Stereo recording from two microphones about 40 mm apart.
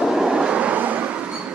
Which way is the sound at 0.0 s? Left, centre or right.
Centre.